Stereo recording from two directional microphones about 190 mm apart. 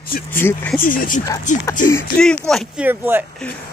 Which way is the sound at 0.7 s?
45° left (ahead or behind).